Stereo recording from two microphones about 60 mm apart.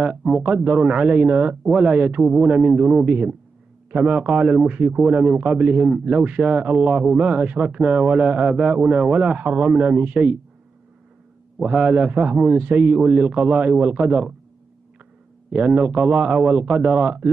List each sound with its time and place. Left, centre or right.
0.0 s a man's voice: centre
11.6 s a man's voice: right
15.5 s a man's voice: right